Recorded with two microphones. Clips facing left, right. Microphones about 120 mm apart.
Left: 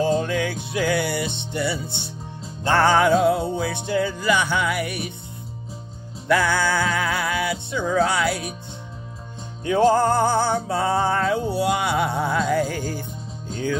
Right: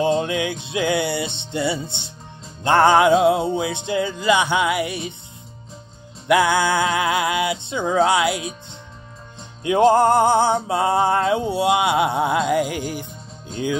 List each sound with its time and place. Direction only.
0.2 s music: 20° right (ahead or behind)
6.2 s music: 20° right (ahead or behind)
9.9 s music: 20° right (ahead or behind)